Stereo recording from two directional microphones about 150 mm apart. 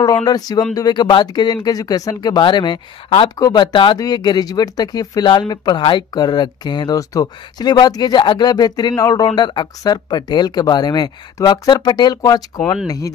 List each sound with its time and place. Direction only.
0.0 s speech: 25° left (ahead or behind)